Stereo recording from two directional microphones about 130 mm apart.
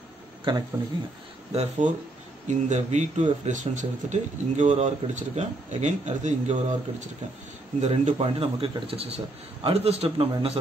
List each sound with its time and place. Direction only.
1.5 s speech: 65° right (ahead or behind)
7.8 s a man's voice: 55° right (ahead or behind)